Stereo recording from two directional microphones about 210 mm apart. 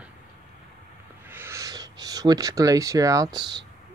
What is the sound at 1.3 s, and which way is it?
Speech, 10° right (ahead or behind).